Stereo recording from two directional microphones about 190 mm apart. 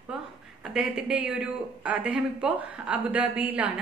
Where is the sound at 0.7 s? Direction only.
5° right (ahead or behind).